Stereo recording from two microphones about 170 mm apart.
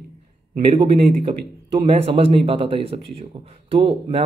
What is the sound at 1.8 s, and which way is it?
Speech, 35° right (ahead or behind).